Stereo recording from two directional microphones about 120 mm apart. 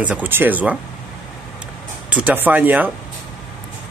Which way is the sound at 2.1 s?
10° right (ahead or behind).